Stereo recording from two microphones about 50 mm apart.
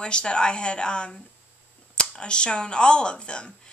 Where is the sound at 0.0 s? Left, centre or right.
Centre.